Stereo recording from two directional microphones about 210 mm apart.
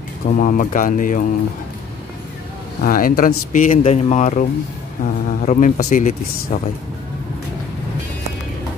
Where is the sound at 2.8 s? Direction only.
45° left (ahead or behind).